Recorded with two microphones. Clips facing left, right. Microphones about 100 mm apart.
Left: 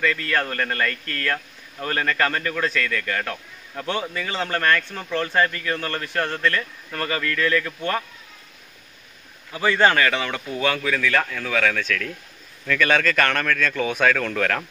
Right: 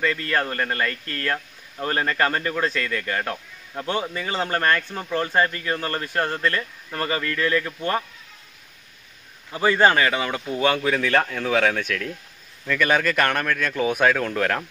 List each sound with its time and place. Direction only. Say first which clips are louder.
0.0 s speech: even; 25° right (ahead or behind)
9.5 s speech: right 1 dB; 20° right (ahead or behind)
12.6 s a man's voice: even; 10° right (ahead or behind)